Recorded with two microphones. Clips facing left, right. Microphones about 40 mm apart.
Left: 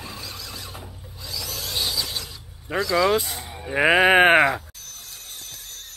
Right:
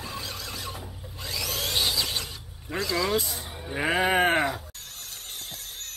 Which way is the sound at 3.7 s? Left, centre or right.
Left.